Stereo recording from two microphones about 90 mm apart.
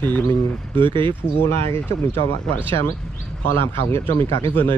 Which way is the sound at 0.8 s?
70° right (ahead or behind).